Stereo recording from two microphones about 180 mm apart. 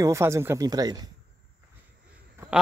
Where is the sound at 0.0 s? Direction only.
15° right (ahead or behind).